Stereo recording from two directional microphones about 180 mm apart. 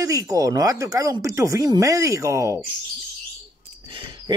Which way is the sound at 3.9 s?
30° right (ahead or behind).